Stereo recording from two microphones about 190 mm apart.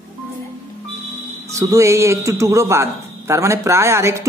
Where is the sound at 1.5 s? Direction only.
15° right (ahead or behind).